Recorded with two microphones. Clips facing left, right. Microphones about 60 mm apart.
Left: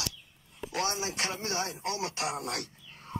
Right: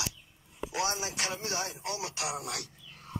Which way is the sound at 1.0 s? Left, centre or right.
Left.